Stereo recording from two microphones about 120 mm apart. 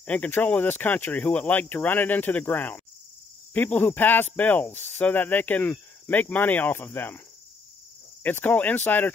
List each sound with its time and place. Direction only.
0.0 s speech: 15° left (ahead or behind)
8.2 s speech: 15° left (ahead or behind)